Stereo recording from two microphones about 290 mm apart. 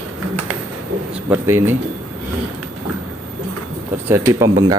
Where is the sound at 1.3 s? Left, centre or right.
Centre.